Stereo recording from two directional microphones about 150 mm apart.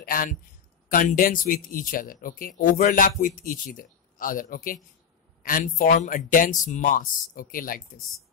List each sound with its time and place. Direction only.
0.0 s speech: 70° left (ahead or behind)